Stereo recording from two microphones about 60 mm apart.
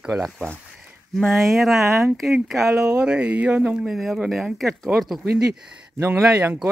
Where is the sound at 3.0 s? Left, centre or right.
Centre.